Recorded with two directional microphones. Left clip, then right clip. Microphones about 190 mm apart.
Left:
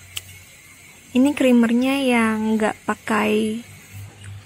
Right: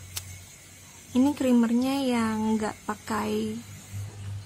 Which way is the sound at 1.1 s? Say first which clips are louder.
Left 7 dB; 25° left (ahead or behind).